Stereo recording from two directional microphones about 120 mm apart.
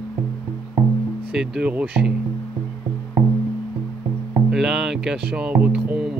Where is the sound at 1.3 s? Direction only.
5° right (ahead or behind).